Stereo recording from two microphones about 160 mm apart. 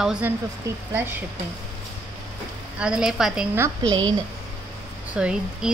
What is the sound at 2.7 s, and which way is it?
Speech, 5° right (ahead or behind).